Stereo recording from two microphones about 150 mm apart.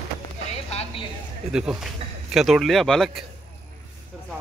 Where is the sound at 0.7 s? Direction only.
40° left (ahead or behind).